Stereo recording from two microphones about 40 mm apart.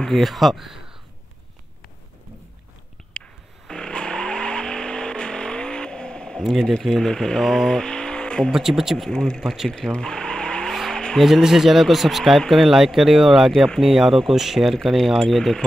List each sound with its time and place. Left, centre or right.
0.0 s speech: centre
3.1 s a sound: left
3.6 s vehicle: centre
6.8 s speech: centre
7.7 s vehicle: left
8.5 s speech: centre
9.1 s speech: centre
9.7 s vehicle: centre
11.2 s speech: centre